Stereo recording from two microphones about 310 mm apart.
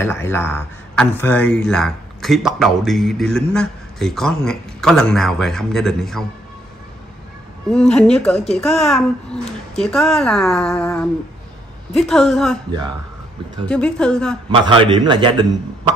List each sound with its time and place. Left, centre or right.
0.0 s a man's voice: centre
7.7 s a man's voice: centre
13.7 s a man's voice: centre
14.5 s a man's voice: centre